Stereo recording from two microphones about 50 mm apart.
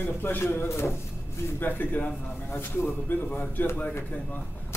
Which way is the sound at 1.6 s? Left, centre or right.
Left.